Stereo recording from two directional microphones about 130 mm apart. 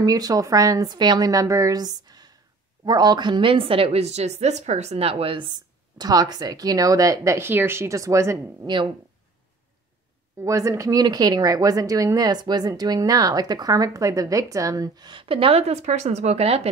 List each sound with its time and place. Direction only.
0.0 s a woman's voice: 30° right (ahead or behind)
5.9 s speech: 30° right (ahead or behind)
10.4 s speech: 25° right (ahead or behind); by 16.6 s 50° right (ahead or behind)